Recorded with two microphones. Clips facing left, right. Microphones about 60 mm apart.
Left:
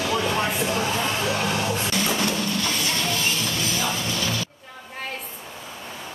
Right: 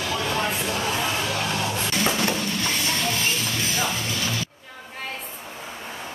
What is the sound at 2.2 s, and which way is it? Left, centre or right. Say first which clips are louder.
Music: even; right.